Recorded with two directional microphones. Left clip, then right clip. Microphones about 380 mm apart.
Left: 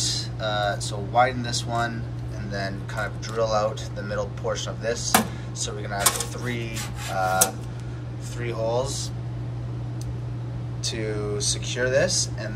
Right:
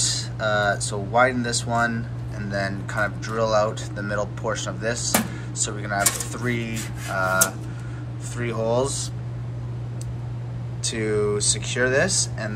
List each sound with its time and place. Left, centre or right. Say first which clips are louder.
0.0 s speech: right 3 dB; centre
7.2 s a sound: right 1 dB; centre
8.4 s speech: right 3 dB; centre
10.8 s speech: right 6 dB; centre